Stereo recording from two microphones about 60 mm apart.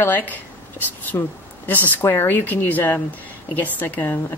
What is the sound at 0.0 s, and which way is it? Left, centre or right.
Speech, left.